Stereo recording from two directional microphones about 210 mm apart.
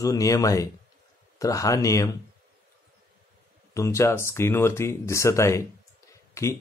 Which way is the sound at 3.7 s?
15° left (ahead or behind).